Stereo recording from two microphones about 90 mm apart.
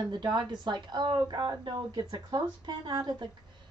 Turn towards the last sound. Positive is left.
turn(degrees=-50)  # may be behind; listen again after turning